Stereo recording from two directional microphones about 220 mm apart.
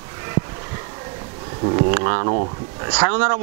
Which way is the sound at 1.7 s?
20° right (ahead or behind).